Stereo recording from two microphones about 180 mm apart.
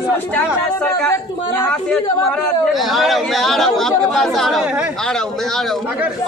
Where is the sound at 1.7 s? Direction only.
5° left (ahead or behind).